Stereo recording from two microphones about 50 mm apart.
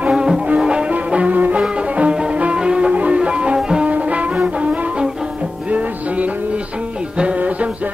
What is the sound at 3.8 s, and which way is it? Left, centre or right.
Music, right.